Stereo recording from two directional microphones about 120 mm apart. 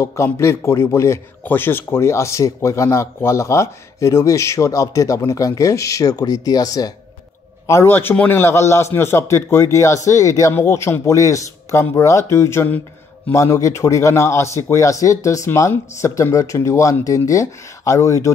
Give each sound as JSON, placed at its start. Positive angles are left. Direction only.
{"t": 0.0, "sound": "a man's voice", "side_deg": 25}
{"t": 7.6, "sound": "a man's voice", "side_deg": 20}